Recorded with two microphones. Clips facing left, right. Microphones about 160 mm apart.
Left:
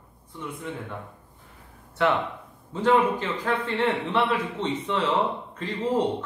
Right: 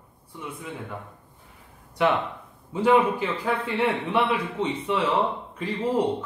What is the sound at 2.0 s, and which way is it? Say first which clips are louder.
Speech: right 1 dB; 15° right (ahead or behind).